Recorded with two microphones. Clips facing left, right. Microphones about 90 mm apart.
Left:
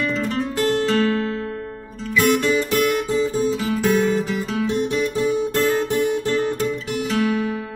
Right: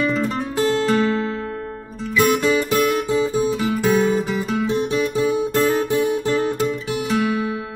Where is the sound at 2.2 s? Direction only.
5° right (ahead or behind).